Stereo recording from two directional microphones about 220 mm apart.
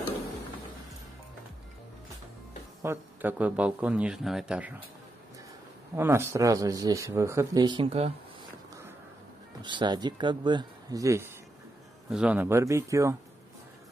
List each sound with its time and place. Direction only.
2.8 s speech: 10° right (ahead or behind)
5.9 s speech: 10° right (ahead or behind)
9.6 s speech: 20° right (ahead or behind)